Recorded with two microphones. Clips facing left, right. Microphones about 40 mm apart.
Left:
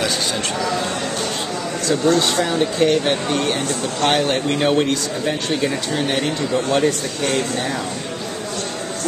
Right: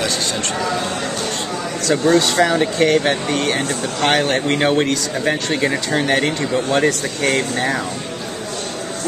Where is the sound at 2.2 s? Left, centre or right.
Right.